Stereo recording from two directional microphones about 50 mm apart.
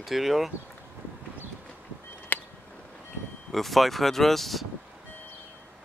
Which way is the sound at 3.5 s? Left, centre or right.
Centre.